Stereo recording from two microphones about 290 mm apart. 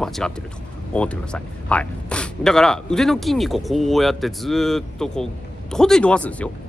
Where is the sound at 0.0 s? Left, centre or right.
Centre.